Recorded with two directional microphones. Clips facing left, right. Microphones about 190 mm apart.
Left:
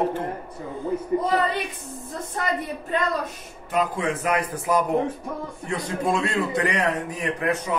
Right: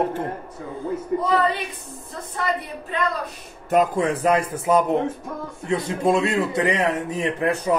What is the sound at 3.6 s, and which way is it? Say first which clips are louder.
A man's voice: right 5 dB; 45° right (ahead or behind).